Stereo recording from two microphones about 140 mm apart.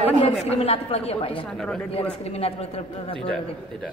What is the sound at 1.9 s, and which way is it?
A man's voice, 45° left (ahead or behind).